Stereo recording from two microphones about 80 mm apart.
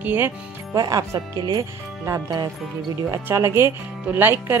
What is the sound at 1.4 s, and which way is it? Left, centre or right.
Speech, right.